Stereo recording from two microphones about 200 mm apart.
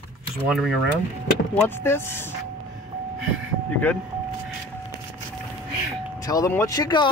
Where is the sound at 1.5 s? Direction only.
10° left (ahead or behind).